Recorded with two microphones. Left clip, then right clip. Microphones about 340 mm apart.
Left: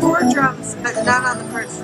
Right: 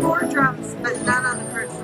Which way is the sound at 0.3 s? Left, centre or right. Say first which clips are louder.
Left 3 dB; centre.